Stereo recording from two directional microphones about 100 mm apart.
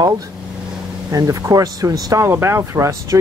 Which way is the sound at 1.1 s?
35° right (ahead or behind).